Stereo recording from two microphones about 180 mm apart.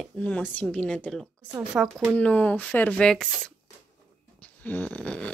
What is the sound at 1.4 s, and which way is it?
Speech, 10° right (ahead or behind).